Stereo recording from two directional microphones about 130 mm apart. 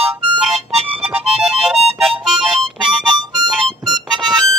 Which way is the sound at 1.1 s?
5° right (ahead or behind).